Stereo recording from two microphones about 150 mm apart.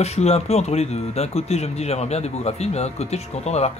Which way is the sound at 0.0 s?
45° left (ahead or behind).